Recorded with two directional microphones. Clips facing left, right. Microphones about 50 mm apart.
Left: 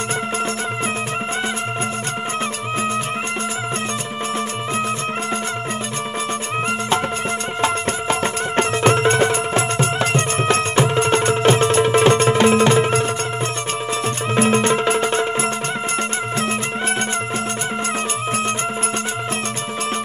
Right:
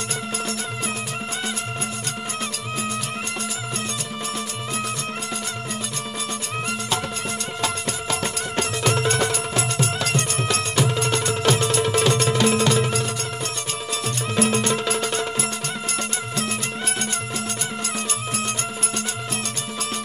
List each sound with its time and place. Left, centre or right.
7.6 s music: left
14.3 s music: left